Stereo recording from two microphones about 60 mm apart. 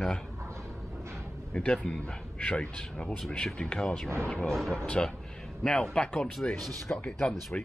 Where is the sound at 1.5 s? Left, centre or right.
Centre.